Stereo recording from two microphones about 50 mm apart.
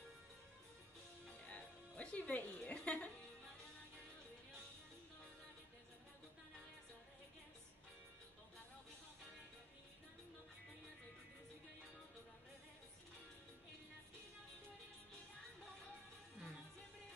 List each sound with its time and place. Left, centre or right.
1.4 s music: left